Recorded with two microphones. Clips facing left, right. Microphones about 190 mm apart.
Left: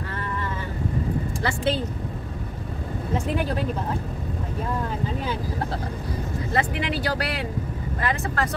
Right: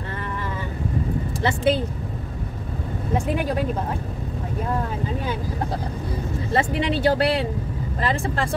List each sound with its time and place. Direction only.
1.4 s speech: 15° right (ahead or behind)
6.5 s speech: 25° right (ahead or behind)